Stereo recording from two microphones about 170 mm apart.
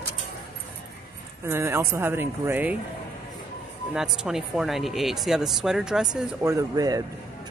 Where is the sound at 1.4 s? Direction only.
15° right (ahead or behind).